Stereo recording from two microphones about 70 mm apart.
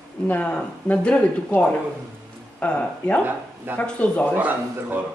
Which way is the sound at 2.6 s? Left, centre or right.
Centre.